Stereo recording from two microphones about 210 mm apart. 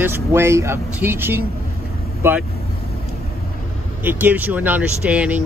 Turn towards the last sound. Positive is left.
turn(degrees=-5)  # may be behind; listen again after turning